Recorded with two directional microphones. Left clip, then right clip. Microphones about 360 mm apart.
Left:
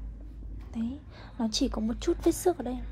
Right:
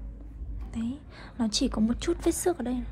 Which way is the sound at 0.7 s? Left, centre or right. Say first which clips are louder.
Right 1 dB; centre.